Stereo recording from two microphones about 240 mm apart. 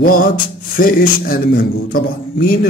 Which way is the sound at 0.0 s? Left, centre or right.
Left.